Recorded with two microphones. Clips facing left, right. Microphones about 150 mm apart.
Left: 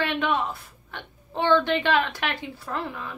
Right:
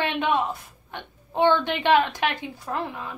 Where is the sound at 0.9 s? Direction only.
15° right (ahead or behind).